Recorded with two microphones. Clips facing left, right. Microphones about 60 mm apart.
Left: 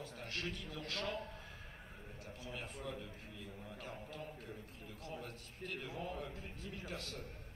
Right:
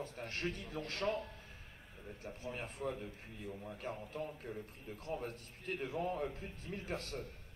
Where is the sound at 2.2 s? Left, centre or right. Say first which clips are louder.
Right 4 dB; right.